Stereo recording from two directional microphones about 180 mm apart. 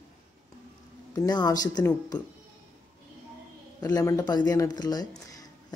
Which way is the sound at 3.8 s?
20° left (ahead or behind).